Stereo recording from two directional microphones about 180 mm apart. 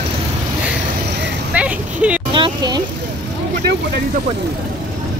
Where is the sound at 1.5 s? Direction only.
5° right (ahead or behind).